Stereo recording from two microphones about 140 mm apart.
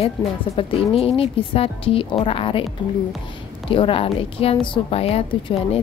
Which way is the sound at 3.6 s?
40° left (ahead or behind).